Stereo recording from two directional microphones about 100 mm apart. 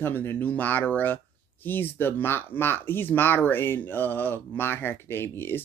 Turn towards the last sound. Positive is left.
turn(degrees=25)  # may be behind; listen again after turning